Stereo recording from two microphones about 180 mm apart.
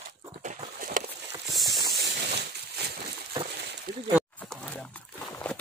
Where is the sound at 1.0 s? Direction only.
45° right (ahead or behind).